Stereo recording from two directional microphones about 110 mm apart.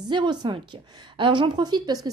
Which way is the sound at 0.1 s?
45° right (ahead or behind).